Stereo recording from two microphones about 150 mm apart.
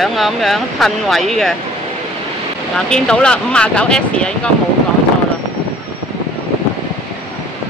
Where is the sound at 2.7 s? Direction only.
5° left (ahead or behind).